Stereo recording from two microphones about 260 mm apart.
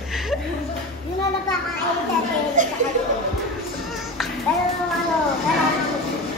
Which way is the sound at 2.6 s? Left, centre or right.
Right.